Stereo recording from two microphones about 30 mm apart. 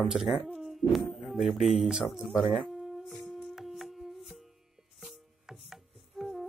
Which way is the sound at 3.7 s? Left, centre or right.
Centre.